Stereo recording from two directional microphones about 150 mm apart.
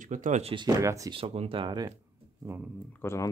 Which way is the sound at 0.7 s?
20° right (ahead or behind).